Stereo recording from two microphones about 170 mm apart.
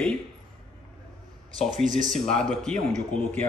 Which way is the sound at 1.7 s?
50° right (ahead or behind).